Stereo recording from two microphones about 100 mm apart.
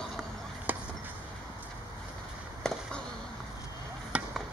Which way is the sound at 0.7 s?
15° right (ahead or behind).